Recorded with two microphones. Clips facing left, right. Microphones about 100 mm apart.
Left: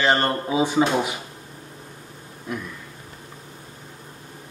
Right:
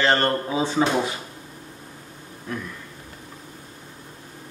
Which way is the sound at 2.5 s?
15° left (ahead or behind).